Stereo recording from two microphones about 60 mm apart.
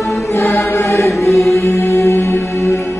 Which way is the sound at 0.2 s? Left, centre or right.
Left.